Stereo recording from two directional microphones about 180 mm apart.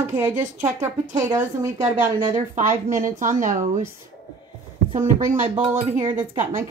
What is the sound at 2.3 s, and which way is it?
Speech, 45° right (ahead or behind).